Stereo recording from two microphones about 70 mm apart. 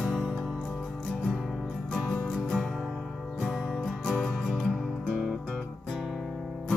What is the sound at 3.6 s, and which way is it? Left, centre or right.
Music, centre.